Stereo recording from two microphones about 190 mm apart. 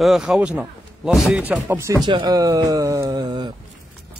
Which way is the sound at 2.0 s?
20° right (ahead or behind).